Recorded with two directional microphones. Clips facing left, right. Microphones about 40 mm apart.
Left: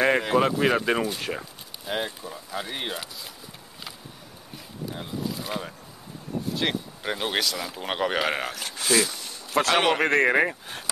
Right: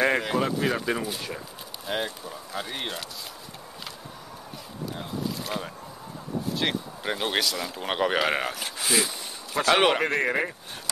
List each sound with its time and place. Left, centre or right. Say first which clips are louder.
0.0 s a sound: left 2 dB; centre
0.5 s speech: left 4 dB; centre
1.9 s speech: even; centre
4.9 s speech: even; centre
9.6 s speech: even; left